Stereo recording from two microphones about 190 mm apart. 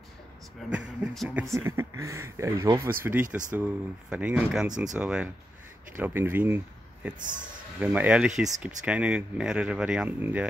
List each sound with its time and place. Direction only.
0.7 s speech: centre (ahead or behind)
1.5 s speech: 15° right (ahead or behind)
7.2 s speech: 45° right (ahead or behind)
7.8 s speech: 10° right (ahead or behind)